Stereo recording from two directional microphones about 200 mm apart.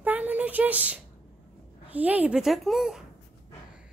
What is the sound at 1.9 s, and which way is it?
A woman's voice, 10° right (ahead or behind).